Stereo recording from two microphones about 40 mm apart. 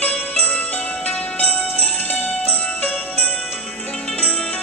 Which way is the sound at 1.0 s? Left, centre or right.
Left.